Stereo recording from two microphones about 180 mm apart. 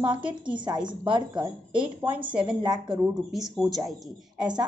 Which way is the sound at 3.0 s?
Centre (ahead or behind).